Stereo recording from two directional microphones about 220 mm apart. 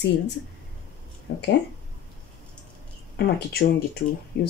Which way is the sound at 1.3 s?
55° left (ahead or behind).